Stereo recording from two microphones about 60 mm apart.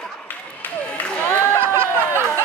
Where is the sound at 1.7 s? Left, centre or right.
Right.